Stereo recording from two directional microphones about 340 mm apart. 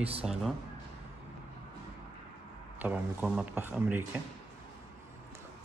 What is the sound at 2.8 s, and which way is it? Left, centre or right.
Speech, centre.